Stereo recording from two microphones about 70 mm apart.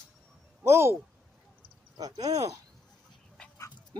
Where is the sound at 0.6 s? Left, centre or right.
Right.